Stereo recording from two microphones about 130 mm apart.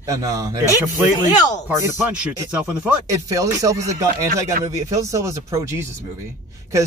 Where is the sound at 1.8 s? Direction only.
20° right (ahead or behind).